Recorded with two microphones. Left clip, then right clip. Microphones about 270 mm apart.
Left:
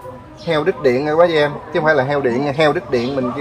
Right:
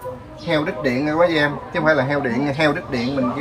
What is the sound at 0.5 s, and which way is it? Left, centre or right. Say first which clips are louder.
A man's voice: left 5 dB; left.